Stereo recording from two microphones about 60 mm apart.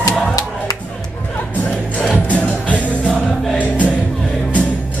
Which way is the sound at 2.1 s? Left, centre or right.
Left.